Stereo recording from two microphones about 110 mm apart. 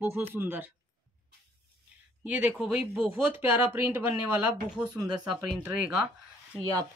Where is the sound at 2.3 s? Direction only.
10° right (ahead or behind).